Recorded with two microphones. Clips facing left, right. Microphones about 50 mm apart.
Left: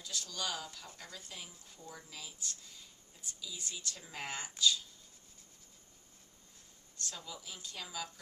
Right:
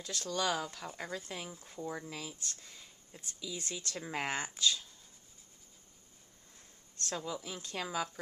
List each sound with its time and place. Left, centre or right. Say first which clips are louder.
0.0 s speech: right 6 dB; right
7.2 s speech: right 7 dB; right